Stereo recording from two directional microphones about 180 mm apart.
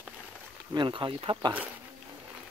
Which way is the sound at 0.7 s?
25° right (ahead or behind).